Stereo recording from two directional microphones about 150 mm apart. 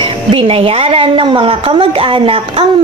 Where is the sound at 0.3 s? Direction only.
40° right (ahead or behind).